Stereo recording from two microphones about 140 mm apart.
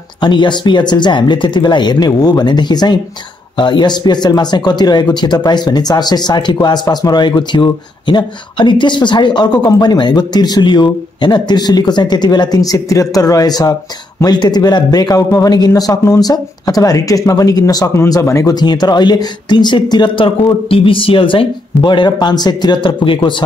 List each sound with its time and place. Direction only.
0.2 s a man's voice: 35° left (ahead or behind)